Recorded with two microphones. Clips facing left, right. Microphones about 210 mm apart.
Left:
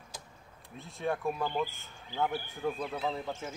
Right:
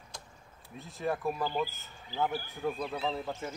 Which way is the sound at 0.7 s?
Centre (ahead or behind).